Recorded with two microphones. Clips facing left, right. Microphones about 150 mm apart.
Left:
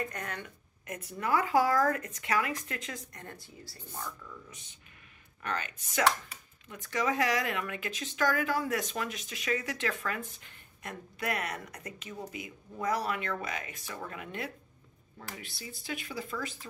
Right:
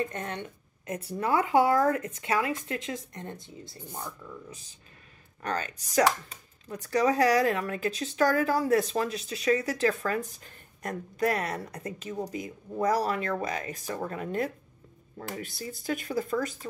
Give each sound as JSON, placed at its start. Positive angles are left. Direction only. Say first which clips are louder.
{"t": 0.0, "sound": "speech", "louder": "right 5 dB", "side_deg": -25}